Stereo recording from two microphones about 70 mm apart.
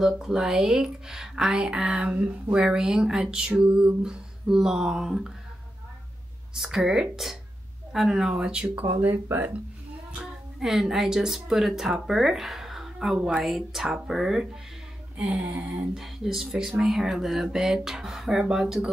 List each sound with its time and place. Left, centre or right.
0.0 s speech: centre
6.5 s speech: centre
9.0 s speech: right
10.1 s speech: centre
15.9 s speech: centre